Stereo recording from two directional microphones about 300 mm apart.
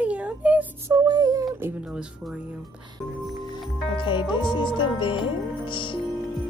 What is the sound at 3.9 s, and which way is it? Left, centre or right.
Music, centre.